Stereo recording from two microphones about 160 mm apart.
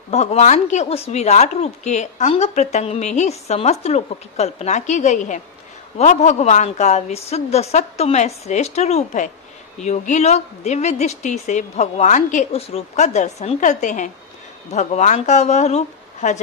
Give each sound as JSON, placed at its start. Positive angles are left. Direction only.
{"t": 0.1, "sound": "a woman's voice", "side_deg": 40}